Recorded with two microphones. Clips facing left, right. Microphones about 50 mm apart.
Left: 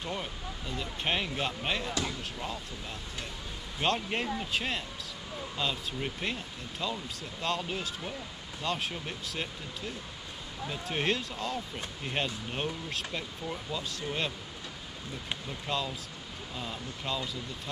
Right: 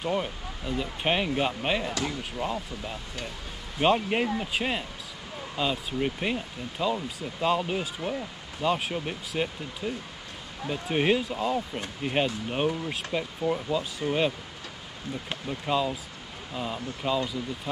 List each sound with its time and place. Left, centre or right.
0.0 s speech: centre
15.4 s speech: centre